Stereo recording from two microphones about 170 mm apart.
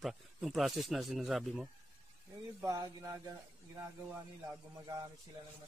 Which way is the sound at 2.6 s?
20° right (ahead or behind).